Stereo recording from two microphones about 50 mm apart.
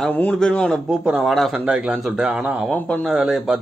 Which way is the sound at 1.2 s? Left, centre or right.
Centre.